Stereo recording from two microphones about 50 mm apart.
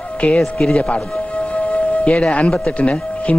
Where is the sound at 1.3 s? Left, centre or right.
Left.